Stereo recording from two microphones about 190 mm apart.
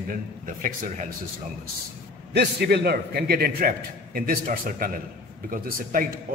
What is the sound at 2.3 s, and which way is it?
A man's voice, 60° right (ahead or behind).